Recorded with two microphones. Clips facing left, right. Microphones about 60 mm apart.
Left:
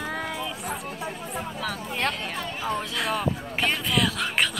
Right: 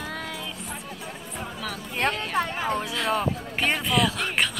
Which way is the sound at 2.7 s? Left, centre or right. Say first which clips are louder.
Right 1 dB; centre.